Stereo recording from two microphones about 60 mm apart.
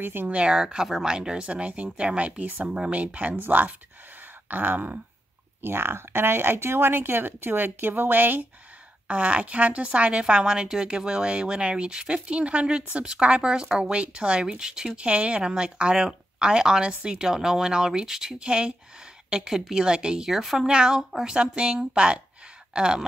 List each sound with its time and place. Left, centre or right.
0.0 s speech: right
0.3 s speech: centre; by 5.0 s right
5.6 s speech: right
9.0 s speech: centre